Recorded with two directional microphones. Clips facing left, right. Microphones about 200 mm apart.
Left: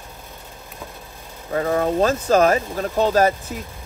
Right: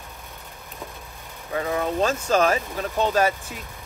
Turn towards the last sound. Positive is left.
turn(degrees=40)  # may be behind; listen again after turning